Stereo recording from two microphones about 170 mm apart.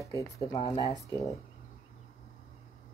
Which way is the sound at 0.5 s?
40° left (ahead or behind).